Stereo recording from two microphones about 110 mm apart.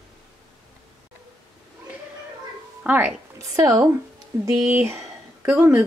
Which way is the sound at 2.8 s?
15° right (ahead or behind).